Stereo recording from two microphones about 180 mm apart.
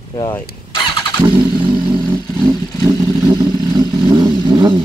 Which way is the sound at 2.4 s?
20° right (ahead or behind).